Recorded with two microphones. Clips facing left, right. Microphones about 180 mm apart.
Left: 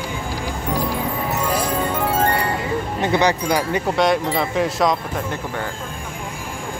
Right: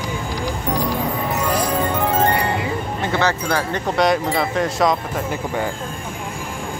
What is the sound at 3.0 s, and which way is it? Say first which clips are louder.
Speech: left 3 dB; 15° left (ahead or behind).